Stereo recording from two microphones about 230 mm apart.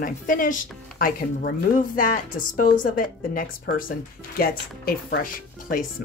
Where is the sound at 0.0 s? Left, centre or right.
Left.